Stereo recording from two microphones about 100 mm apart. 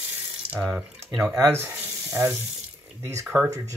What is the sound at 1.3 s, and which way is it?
Speech, 25° right (ahead or behind).